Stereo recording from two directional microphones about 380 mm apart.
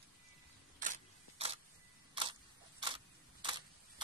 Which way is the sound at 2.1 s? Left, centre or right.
Centre.